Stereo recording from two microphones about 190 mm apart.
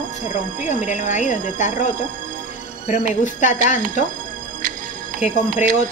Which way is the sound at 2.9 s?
40° left (ahead or behind).